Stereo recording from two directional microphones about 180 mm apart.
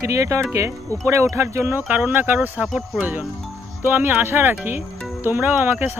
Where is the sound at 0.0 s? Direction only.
15° right (ahead or behind).